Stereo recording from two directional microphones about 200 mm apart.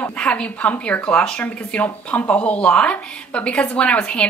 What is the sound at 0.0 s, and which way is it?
A woman's voice, 5° left (ahead or behind).